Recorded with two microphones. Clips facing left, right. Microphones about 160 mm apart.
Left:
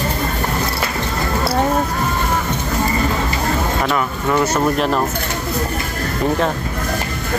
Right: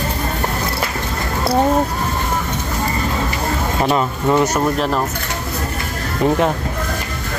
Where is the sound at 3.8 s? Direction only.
20° right (ahead or behind).